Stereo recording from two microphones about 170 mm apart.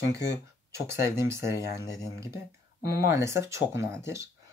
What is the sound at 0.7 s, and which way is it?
Speech, 15° right (ahead or behind).